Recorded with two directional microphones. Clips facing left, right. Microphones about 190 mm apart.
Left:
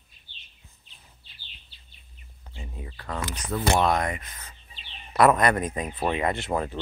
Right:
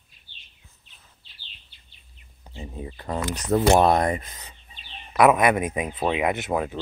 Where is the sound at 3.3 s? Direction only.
45° right (ahead or behind).